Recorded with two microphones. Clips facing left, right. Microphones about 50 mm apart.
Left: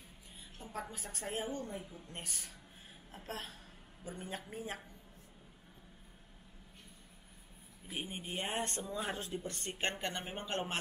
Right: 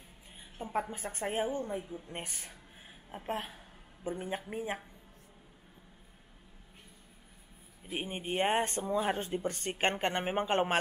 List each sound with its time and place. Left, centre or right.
0.6 s a woman's voice: right
7.9 s speech: right